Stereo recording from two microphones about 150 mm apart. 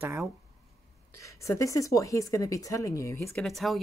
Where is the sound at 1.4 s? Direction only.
20° left (ahead or behind).